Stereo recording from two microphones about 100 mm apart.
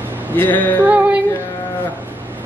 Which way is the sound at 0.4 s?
15° left (ahead or behind).